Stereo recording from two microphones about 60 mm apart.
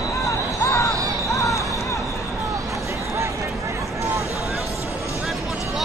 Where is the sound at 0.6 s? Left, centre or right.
Left.